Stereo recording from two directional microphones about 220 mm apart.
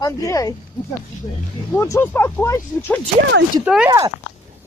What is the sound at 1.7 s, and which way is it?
Speech, 10° left (ahead or behind).